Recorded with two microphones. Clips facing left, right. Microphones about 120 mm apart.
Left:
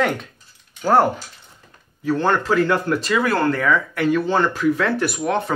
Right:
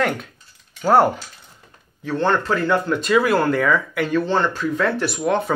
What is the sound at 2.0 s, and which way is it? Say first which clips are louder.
Speech: left 1 dB; 10° left (ahead or behind).